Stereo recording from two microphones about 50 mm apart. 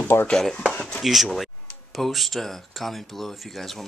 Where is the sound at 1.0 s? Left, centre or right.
Centre.